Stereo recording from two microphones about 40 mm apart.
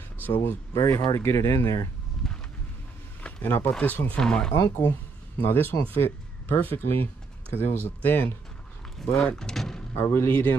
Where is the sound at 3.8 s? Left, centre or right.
Left.